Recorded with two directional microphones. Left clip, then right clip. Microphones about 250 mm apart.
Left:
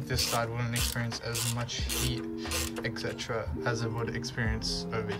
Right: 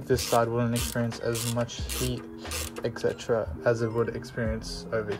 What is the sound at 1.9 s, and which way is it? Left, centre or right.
Music, centre.